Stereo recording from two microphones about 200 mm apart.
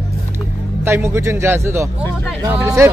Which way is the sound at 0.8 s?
15° right (ahead or behind).